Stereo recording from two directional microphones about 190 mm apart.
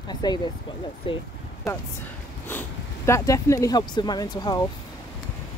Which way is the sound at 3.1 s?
15° left (ahead or behind).